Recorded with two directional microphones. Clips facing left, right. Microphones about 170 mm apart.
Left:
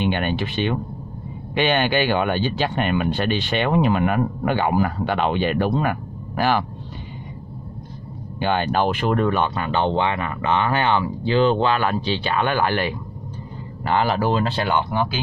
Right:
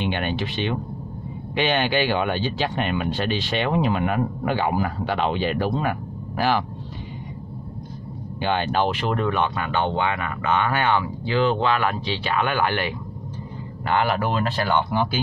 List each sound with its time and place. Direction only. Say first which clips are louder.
0.0 s speech: left 3 dB; 50° left (ahead or behind)
8.4 s speech: left 2 dB; 50° left (ahead or behind)
9.6 s speech: left 3 dB; 30° left (ahead or behind)